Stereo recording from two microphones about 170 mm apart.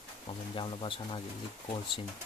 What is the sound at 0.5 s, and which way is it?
Speech, 30° left (ahead or behind).